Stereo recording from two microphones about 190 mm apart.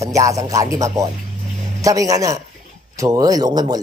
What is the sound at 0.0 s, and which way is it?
Speech, 15° right (ahead or behind).